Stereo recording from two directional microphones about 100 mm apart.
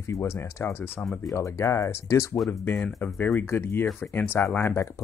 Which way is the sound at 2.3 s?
5° left (ahead or behind).